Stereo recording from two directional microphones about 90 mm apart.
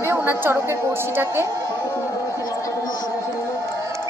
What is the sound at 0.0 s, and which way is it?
A woman's voice, 25° right (ahead or behind).